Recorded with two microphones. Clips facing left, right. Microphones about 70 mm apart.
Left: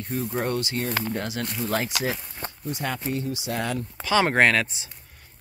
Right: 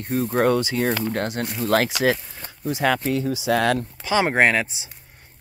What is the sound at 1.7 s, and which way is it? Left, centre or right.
Speech, right.